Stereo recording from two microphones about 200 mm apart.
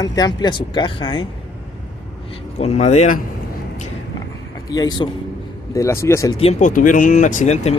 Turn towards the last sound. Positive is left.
turn(degrees=35)  # may be behind; listen again after turning